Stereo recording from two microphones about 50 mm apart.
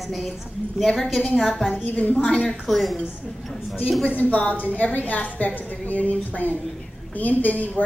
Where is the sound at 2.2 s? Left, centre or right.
Centre.